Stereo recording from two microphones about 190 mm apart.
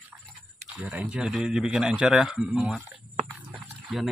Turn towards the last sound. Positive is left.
turn(degrees=-5)  # may be behind; listen again after turning